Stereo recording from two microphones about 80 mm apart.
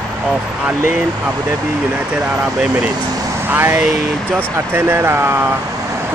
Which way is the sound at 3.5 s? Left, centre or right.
Right.